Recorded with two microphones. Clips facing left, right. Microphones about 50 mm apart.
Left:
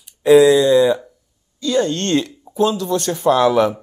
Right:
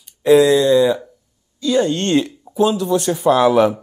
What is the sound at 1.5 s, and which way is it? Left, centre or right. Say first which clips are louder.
Speech: right 1 dB; centre.